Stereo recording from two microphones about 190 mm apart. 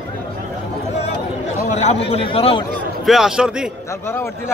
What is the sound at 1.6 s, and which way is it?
A man's voice, 35° left (ahead or behind).